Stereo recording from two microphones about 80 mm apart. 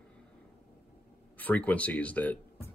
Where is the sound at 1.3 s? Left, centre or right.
Left.